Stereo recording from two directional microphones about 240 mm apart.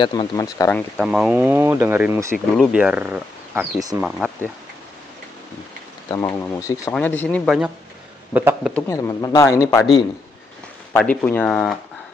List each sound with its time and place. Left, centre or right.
0.0 s speech: centre
6.0 s a man's voice: centre
8.7 s speech: centre